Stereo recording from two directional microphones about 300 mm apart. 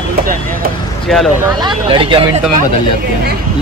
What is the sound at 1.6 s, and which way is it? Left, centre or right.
Speech, centre.